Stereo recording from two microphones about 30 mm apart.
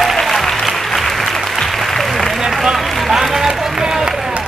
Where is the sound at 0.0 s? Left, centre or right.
Centre.